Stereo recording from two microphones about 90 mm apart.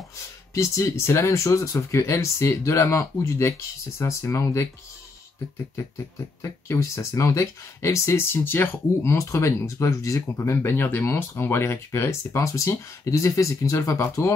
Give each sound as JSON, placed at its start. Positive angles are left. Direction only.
{"t": 0.6, "sound": "speech", "side_deg": 30}
{"t": 6.4, "sound": "speech", "side_deg": 35}